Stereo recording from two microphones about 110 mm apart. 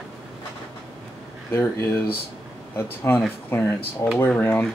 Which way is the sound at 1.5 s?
20° left (ahead or behind).